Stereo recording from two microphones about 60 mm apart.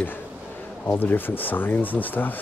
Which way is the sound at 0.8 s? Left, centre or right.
Left.